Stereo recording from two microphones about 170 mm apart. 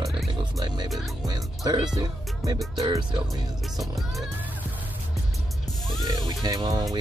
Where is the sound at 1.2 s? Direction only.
20° right (ahead or behind).